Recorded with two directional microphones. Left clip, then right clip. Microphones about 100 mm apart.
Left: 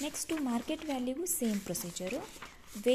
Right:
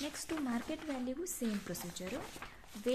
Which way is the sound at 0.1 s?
40° left (ahead or behind).